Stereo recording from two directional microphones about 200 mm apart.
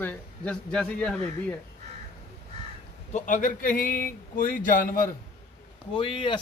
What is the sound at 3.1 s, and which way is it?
A man's voice, 40° left (ahead or behind).